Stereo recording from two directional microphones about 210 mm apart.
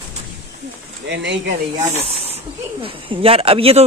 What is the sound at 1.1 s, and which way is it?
Speech, 55° right (ahead or behind).